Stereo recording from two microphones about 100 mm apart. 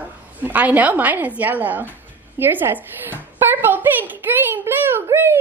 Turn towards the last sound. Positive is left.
turn(degrees=-25)  # may be behind; listen again after turning